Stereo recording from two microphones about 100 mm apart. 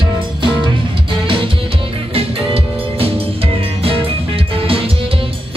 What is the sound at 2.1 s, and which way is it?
Music, 70° right (ahead or behind).